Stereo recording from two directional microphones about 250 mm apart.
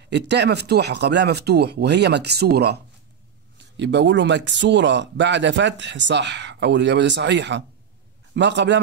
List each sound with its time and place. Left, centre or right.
0.1 s speech: right